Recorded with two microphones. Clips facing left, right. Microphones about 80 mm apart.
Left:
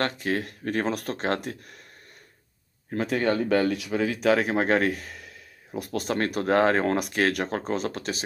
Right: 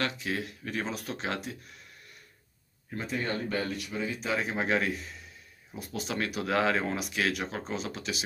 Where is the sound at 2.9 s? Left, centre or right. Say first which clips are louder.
Left 8 dB; left.